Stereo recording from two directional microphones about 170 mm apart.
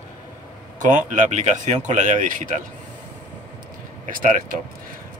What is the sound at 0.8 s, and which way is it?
Speech, 50° right (ahead or behind).